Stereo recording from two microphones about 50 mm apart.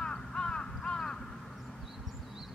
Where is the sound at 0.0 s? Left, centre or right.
Centre.